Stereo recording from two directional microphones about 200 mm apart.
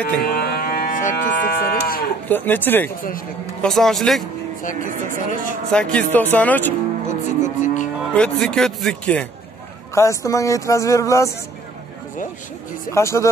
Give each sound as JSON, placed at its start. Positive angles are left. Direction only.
{"t": 0.2, "sound": "moo", "side_deg": 50}
{"t": 2.2, "sound": "speech", "side_deg": 10}
{"t": 4.9, "sound": "speech", "side_deg": -40}
{"t": 5.7, "sound": "speech", "side_deg": 5}
{"t": 7.1, "sound": "speech", "side_deg": 35}
{"t": 8.1, "sound": "speech", "side_deg": 5}
{"t": 12.9, "sound": "speech", "side_deg": 15}